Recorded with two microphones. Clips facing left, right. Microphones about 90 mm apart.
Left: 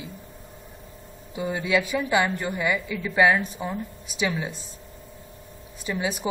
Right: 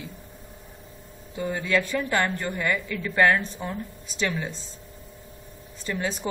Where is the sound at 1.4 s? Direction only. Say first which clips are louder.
Left 1 dB; 10° left (ahead or behind).